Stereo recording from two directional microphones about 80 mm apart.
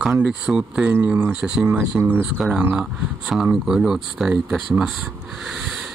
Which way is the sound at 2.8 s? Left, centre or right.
Centre.